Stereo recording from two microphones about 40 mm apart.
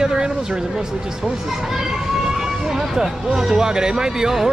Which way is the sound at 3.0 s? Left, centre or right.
Centre.